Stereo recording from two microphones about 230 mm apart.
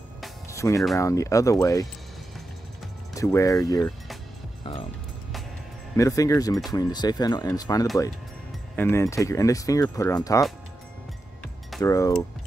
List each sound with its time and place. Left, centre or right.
0.5 s speech: centre
3.2 s speech: centre
5.9 s speech: centre
11.8 s speech: centre